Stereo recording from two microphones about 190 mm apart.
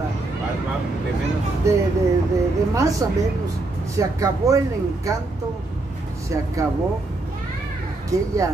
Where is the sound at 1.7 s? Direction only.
15° right (ahead or behind).